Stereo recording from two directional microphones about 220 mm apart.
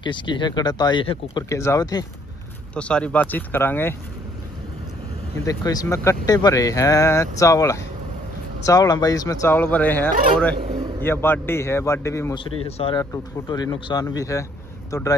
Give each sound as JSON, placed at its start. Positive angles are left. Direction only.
{"t": 0.0, "sound": "speech", "side_deg": 20}
{"t": 2.7, "sound": "speech", "side_deg": 5}
{"t": 5.4, "sound": "speech", "side_deg": 15}
{"t": 12.6, "sound": "speech", "side_deg": 25}
{"t": 13.0, "sound": "speech", "side_deg": 15}